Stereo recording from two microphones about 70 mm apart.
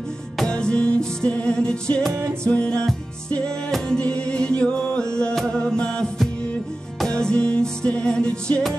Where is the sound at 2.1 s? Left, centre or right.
Right.